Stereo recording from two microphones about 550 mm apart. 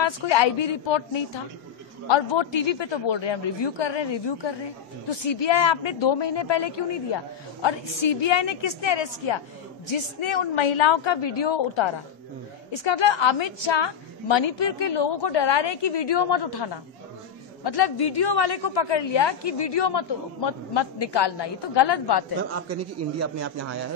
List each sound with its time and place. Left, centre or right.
0.0 s a woman's voice: left
22.5 s a man's voice: right